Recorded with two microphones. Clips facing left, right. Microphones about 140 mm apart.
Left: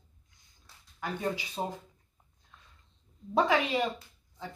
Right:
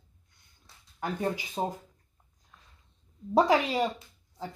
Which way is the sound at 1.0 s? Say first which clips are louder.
Right 2 dB; 45° right (ahead or behind).